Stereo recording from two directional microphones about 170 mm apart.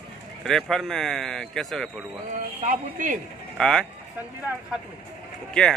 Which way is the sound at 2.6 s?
50° right (ahead or behind).